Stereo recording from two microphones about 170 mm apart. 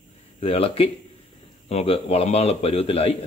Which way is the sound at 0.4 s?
35° left (ahead or behind).